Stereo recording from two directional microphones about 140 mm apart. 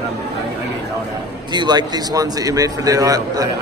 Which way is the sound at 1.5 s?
30° right (ahead or behind).